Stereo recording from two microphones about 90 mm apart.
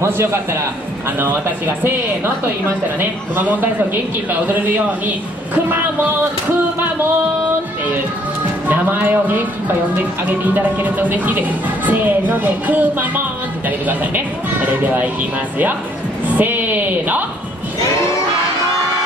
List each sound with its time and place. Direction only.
0.0 s music: 30° right (ahead or behind)
3.0 s music: 20° right (ahead or behind)
4.3 s a man's voice: 20° right (ahead or behind)
8.6 s music: 20° right (ahead or behind)
10.4 s music: 20° right (ahead or behind)
13.7 s a man's voice: 20° right (ahead or behind)
16.3 s speech: 20° right (ahead or behind)